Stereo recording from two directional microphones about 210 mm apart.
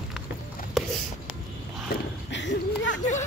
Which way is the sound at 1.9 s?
55° left (ahead or behind).